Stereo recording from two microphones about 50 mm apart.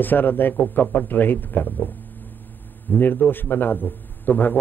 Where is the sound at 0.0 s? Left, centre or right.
Left.